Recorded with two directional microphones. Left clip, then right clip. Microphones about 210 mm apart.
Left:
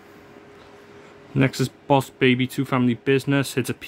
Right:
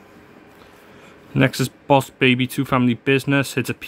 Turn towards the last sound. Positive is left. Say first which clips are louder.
# right 3 dB
turn(degrees=-10)  # may be behind; listen again after turning